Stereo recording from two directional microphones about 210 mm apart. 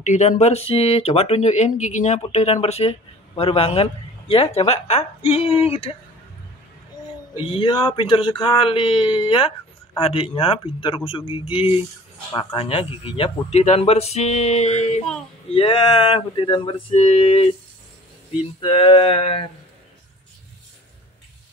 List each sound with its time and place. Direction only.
0.0 s speech: 35° left (ahead or behind)
7.3 s speech: 25° left (ahead or behind)
18.6 s speech: 25° left (ahead or behind)